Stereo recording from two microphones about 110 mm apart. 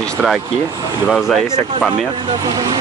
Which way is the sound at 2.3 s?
40° right (ahead or behind).